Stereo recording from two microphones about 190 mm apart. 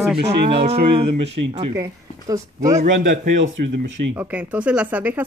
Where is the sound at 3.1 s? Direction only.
55° right (ahead or behind).